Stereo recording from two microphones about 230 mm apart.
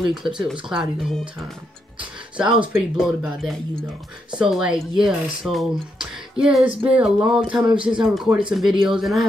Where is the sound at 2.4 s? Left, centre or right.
Right.